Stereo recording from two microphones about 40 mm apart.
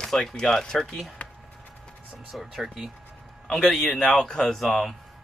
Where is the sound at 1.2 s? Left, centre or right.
Left.